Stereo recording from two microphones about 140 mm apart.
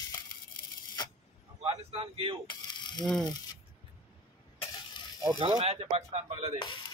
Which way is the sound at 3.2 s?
30° left (ahead or behind).